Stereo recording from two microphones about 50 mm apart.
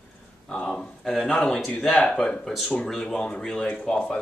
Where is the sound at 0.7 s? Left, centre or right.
Centre.